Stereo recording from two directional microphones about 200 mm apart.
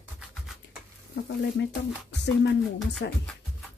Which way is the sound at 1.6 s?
60° left (ahead or behind).